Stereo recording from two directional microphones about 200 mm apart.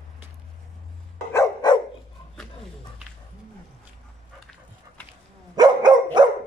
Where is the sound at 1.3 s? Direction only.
15° left (ahead or behind).